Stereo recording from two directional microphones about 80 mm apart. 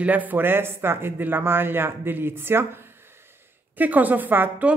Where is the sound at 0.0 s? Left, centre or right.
Centre.